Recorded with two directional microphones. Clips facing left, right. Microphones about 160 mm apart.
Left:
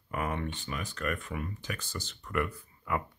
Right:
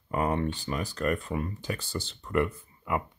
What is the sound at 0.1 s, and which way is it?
Speech, 30° right (ahead or behind).